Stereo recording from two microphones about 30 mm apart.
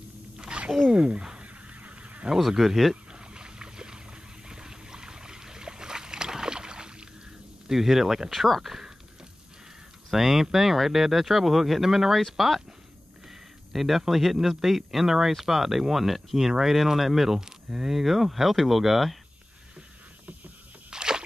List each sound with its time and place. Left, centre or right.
0.5 s a sound: right
0.9 s speech: right
1.8 s honk: right
2.3 s speech: centre
3.1 s boat: right
7.7 s speech: centre
10.1 s speech: centre
13.7 s speech: centre
20.9 s a sound: right